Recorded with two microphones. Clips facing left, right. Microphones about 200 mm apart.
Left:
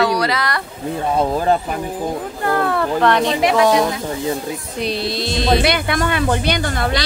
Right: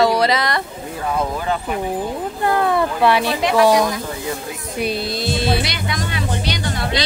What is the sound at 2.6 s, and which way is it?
Speech, 10° right (ahead or behind).